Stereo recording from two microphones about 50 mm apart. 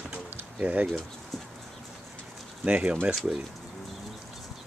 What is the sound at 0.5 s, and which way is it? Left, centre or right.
Speech, right.